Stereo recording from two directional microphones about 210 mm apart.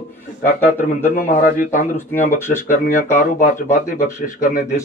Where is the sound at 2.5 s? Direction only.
35° left (ahead or behind).